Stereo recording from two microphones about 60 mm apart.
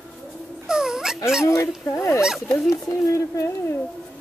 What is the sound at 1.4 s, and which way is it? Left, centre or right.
Speech, left.